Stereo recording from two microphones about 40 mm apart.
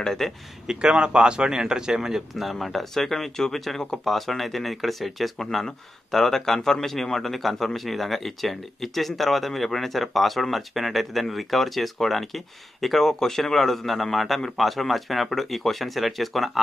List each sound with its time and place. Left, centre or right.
0.0 s speech: centre
0.7 s speech: right; by 16.5 s centre